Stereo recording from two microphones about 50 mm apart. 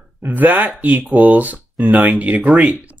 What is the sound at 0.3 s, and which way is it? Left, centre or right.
Speech, right.